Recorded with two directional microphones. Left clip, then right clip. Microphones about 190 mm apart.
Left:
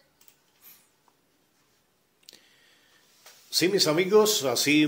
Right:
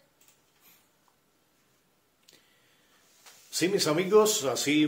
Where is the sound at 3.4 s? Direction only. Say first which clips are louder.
Left 3 dB; 20° left (ahead or behind).